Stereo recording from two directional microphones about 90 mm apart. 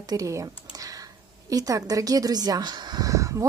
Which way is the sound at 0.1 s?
40° right (ahead or behind).